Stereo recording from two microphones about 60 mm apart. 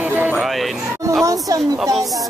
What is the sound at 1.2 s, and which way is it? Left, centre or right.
Speech, right.